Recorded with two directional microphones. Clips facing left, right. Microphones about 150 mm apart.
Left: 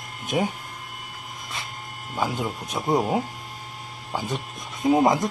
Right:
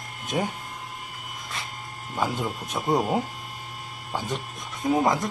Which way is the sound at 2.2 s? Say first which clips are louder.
Left 1 dB; 5° left (ahead or behind).